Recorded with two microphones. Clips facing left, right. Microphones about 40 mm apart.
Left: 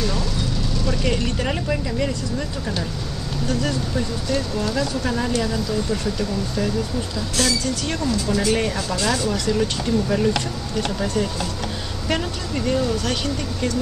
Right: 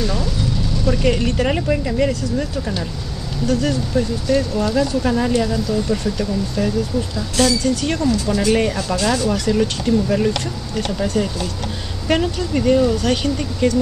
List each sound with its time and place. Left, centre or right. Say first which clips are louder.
0.8 s speech: right 6 dB; centre
3.4 s speech: right 5 dB; centre
4.3 s speech: right 6 dB; centre
12.1 s speech: right 6 dB; centre